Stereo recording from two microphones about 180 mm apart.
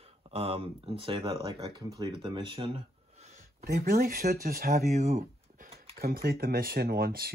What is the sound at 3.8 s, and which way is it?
Speech, 55° right (ahead or behind).